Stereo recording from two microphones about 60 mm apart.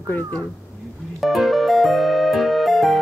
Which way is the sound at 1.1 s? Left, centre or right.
Centre.